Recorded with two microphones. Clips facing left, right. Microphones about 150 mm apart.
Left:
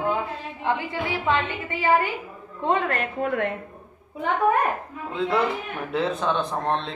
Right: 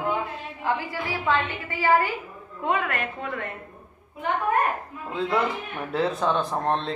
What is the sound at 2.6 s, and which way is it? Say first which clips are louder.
Speech: left 3 dB; 35° left (ahead or behind).